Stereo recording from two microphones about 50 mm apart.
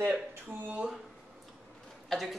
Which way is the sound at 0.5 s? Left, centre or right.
Right.